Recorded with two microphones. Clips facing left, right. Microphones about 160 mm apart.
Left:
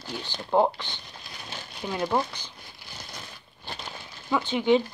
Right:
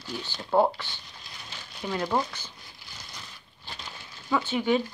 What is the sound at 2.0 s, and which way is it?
Speech, 15° left (ahead or behind).